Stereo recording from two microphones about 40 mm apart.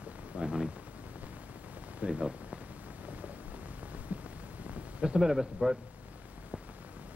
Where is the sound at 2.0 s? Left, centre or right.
Right.